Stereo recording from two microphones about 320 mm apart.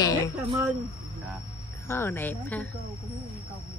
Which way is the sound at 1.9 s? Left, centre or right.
Centre.